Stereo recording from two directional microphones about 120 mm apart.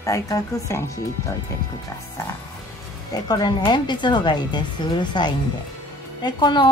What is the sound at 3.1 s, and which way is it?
Speech, 35° left (ahead or behind).